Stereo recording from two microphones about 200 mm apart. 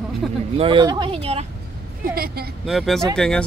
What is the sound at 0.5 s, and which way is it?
Speech, 25° right (ahead or behind).